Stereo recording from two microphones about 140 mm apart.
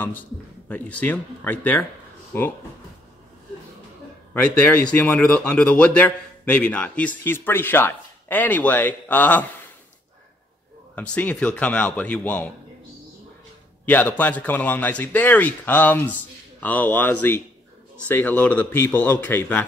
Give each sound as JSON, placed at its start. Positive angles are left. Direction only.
{"t": 0.7, "sound": "speech", "side_deg": 10}
{"t": 4.3, "sound": "speech", "side_deg": 10}
{"t": 11.0, "sound": "speech", "side_deg": 10}
{"t": 13.8, "sound": "speech", "side_deg": 10}